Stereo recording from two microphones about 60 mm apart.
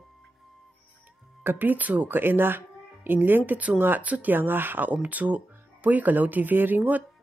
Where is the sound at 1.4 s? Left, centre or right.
Right.